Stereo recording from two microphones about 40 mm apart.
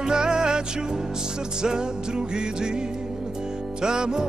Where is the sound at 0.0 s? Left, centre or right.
Centre.